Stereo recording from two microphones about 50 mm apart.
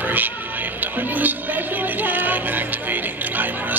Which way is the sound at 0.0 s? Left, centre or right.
Right.